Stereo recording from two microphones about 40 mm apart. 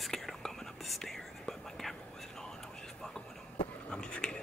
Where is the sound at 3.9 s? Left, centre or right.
Left.